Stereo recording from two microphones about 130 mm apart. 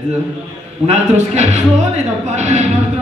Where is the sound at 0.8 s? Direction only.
55° right (ahead or behind).